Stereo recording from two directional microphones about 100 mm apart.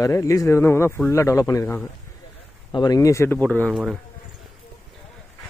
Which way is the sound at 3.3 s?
15° left (ahead or behind).